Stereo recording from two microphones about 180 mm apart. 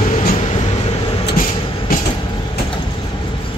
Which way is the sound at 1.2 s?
50° left (ahead or behind).